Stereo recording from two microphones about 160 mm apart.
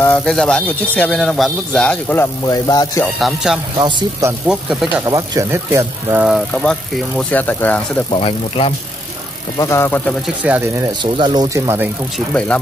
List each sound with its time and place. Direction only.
0.0 s speech: 10° left (ahead or behind)
2.4 s a man's voice: 25° left (ahead or behind)
3.2 s speech: centre (ahead or behind)
3.7 s speech: 30° right (ahead or behind)
4.2 s speech: 5° right (ahead or behind)
5.0 s speech: 20° right (ahead or behind)
6.2 s speech: centre (ahead or behind)
8.1 s speech: 35° left (ahead or behind)
9.6 s speech: 15° left (ahead or behind)
10.2 s speech: 10° right (ahead or behind)
11.0 s speech: 30° right (ahead or behind)